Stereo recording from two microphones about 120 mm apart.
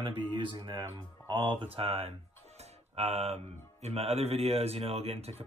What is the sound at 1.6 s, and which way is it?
Speech, 50° right (ahead or behind).